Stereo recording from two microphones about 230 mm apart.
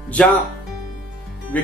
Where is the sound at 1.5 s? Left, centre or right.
Centre.